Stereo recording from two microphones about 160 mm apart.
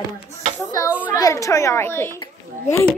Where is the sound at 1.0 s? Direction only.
20° left (ahead or behind).